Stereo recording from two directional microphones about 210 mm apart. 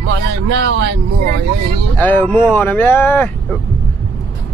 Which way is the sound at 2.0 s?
10° left (ahead or behind).